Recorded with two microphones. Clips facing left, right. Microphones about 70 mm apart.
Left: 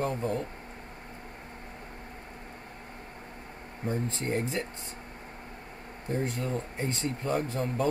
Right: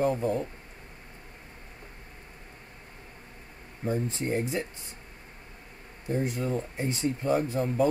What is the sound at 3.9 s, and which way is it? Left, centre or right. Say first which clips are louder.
Speech: right 2 dB; centre.